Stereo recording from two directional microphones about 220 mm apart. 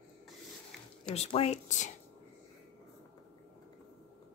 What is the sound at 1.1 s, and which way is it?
Speech, 30° left (ahead or behind).